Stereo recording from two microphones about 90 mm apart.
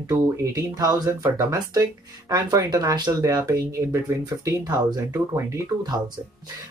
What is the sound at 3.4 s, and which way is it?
Speech, 35° right (ahead or behind).